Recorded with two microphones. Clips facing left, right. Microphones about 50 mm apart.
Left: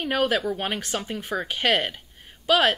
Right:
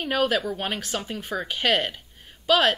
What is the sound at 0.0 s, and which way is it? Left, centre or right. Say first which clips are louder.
A woman's voice: even; centre.